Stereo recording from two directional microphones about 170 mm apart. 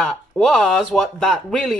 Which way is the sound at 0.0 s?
5° left (ahead or behind).